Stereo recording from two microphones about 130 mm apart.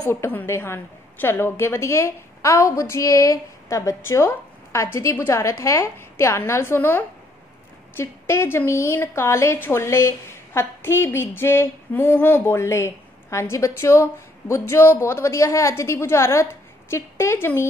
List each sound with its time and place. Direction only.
0.0 s a woman's voice: 20° left (ahead or behind)